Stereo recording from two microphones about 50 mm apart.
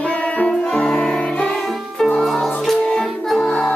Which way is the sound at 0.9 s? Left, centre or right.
Centre.